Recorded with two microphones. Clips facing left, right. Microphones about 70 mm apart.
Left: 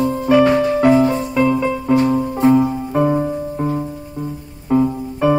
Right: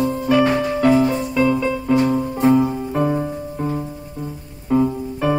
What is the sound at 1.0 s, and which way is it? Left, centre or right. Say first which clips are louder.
Music: left 2 dB; left.